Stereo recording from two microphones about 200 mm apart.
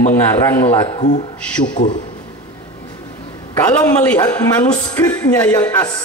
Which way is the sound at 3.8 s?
10° left (ahead or behind).